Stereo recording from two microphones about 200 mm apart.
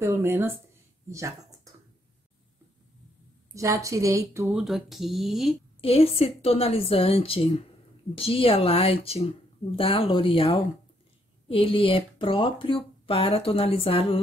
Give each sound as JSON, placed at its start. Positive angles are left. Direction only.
{"t": 0.0, "sound": "a woman's voice", "side_deg": -15}
{"t": 3.5, "sound": "a woman's voice", "side_deg": -15}
{"t": 4.5, "sound": "speech", "side_deg": 0}
{"t": 5.8, "sound": "speech", "side_deg": 30}